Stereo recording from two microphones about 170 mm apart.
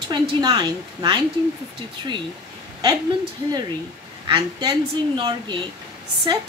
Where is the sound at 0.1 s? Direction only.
25° right (ahead or behind).